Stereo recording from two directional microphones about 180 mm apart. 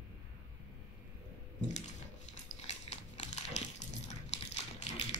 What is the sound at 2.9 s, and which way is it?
Crumpling, 35° left (ahead or behind).